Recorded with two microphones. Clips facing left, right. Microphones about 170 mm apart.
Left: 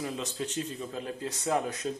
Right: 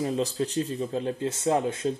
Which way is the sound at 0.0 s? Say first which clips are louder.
Right 7 dB; 35° right (ahead or behind).